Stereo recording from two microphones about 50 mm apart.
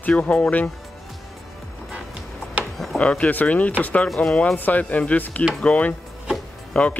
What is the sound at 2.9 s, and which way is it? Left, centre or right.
Speech, left.